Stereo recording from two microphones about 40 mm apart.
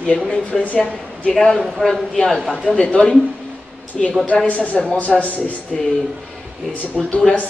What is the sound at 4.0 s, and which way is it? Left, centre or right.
Speech, centre.